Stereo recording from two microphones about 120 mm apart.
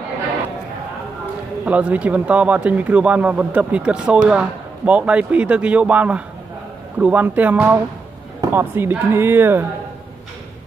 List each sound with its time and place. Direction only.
1.7 s speech: 10° right (ahead or behind)